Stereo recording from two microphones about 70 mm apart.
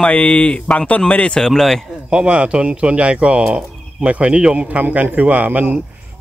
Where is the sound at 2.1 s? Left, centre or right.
Centre.